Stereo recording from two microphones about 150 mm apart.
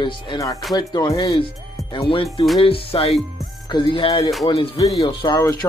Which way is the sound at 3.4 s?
30° left (ahead or behind).